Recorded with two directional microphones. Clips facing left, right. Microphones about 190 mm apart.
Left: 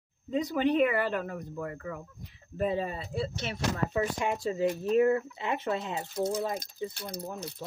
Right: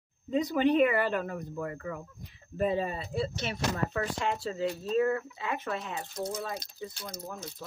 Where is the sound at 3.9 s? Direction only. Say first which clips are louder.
Left 2 dB; 15° left (ahead or behind).